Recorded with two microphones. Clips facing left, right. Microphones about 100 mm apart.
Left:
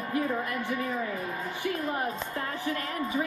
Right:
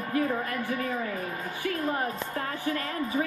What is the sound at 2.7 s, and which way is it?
Speech, 35° right (ahead or behind).